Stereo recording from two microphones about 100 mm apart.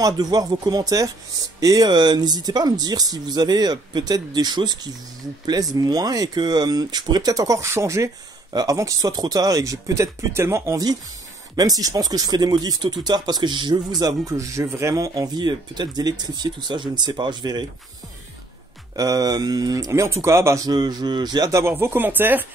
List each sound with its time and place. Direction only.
0.0 s speech: 40° right (ahead or behind)
11.5 s speech: 40° right (ahead or behind)
18.9 s speech: 35° right (ahead or behind)
20.6 s speech: 45° right (ahead or behind)
21.5 s speech: 25° right (ahead or behind)